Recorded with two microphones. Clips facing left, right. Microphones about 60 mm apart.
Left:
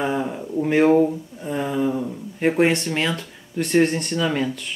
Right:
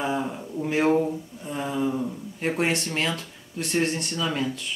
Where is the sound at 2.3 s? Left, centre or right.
Left.